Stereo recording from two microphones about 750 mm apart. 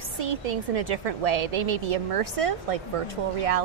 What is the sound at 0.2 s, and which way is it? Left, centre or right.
A woman's voice, right.